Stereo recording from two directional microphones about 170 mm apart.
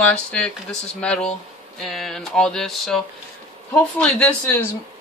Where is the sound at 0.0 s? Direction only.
5° left (ahead or behind).